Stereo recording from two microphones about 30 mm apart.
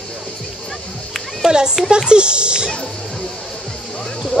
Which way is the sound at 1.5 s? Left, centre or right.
Right.